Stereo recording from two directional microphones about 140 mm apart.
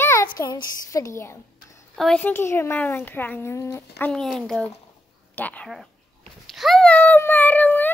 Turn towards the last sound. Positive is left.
turn(degrees=15)  # may be behind; listen again after turning